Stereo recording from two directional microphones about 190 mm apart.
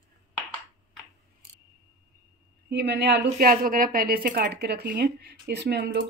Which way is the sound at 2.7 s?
60° right (ahead or behind).